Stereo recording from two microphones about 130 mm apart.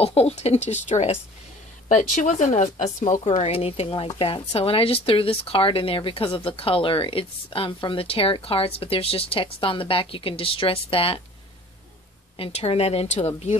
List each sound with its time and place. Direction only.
0.0 s speech: 55° left (ahead or behind)
1.9 s speech: 75° left (ahead or behind); by 11.2 s 45° left (ahead or behind)
12.4 s speech: 50° left (ahead or behind)